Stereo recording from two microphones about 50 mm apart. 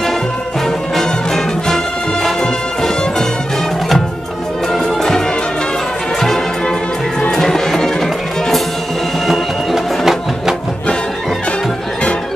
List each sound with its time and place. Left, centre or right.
0.9 s music: centre
4.7 s music: centre
7.2 s music: centre